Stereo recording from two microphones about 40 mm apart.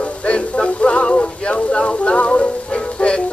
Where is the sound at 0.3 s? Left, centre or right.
Left.